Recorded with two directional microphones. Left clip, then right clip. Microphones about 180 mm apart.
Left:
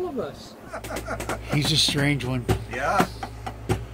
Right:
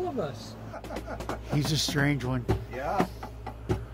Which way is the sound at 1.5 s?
Centre (ahead or behind).